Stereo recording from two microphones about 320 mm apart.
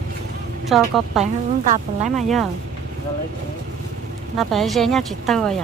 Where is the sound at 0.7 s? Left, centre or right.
Centre.